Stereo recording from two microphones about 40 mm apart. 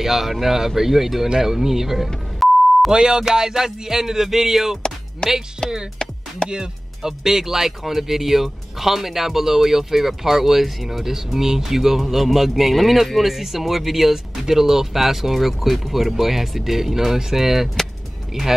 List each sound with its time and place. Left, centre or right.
0.0 s speech: centre
2.4 s beep: centre
2.9 s speech: centre
5.2 s speech: centre
6.0 s music: centre
6.5 s speech: centre